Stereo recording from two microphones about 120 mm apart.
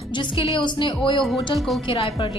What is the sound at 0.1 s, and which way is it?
A woman's voice, 40° left (ahead or behind).